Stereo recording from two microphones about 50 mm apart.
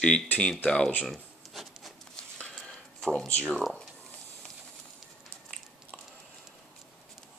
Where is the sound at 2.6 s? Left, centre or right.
Centre.